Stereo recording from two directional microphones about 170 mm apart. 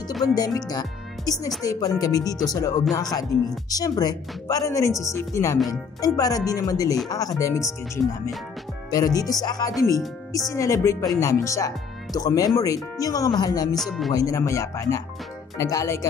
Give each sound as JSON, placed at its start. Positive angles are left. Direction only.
{"t": 0.3, "sound": "speech", "side_deg": 20}
{"t": 13.7, "sound": "speech", "side_deg": 0}
{"t": 14.1, "sound": "speech", "side_deg": 20}